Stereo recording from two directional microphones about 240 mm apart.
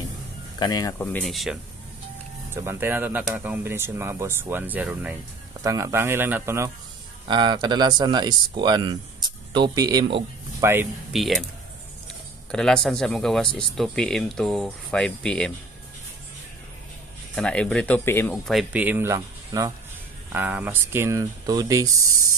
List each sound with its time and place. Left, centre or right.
0.6 s speech: centre
10.7 s speech: centre
12.4 s speech: centre
17.4 s speech: centre